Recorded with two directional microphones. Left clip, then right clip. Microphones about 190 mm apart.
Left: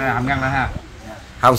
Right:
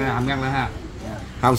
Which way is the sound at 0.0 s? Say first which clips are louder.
Left 4 dB; 10° left (ahead or behind).